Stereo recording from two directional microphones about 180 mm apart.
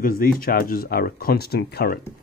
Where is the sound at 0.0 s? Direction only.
55° left (ahead or behind).